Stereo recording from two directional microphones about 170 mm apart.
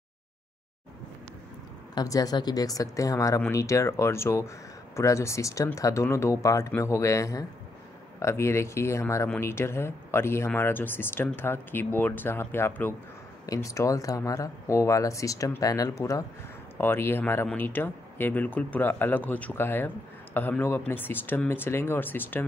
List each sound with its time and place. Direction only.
2.0 s speech: 20° left (ahead or behind)